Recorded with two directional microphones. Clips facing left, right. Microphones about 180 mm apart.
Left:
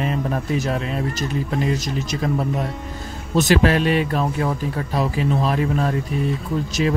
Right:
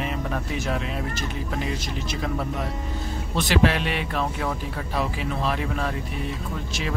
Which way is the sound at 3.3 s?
45° left (ahead or behind).